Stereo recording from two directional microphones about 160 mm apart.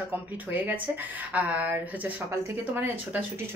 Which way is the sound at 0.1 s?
10° right (ahead or behind).